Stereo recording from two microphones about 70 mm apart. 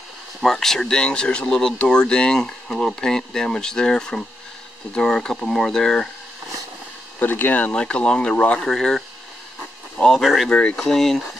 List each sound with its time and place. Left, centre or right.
0.4 s speech: centre
7.2 s speech: left; by 10.5 s centre
10.5 s speech: centre
10.8 s speech: centre